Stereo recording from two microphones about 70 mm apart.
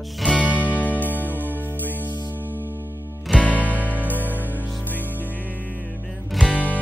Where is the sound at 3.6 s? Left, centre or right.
Right.